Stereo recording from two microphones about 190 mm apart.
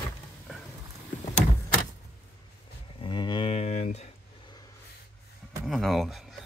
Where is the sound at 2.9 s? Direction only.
25° left (ahead or behind).